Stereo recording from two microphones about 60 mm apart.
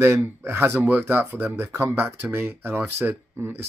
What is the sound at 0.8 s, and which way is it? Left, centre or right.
Speech, right.